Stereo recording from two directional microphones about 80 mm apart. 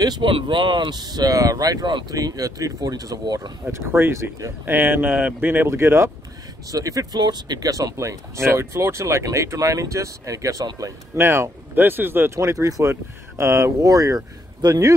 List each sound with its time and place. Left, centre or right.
0.2 s speech: right
2.1 s speech: right
3.7 s speech: right
6.7 s speech: right
7.2 s speech: right
11.1 s speech: right
12.4 s speech: right